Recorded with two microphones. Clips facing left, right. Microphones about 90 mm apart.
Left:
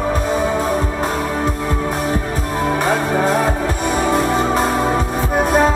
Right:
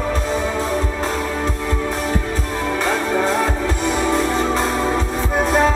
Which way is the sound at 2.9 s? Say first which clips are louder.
Left 1 dB; 15° left (ahead or behind).